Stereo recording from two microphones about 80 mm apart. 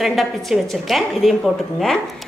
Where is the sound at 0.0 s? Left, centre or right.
Centre.